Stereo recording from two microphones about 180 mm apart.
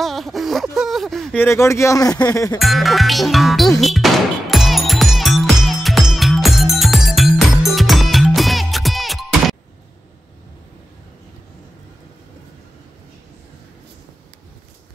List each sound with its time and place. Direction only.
0.0 s a sound: centre (ahead or behind)
1.4 s speech: 15° left (ahead or behind)
2.6 s music: centre (ahead or behind)